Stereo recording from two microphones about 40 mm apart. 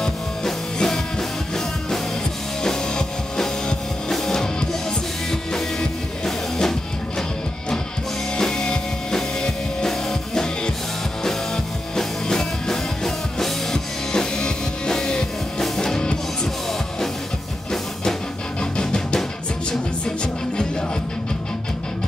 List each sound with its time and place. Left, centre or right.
0.0 s music: centre
2.6 s music: centre
8.4 s music: centre
18.6 s music: left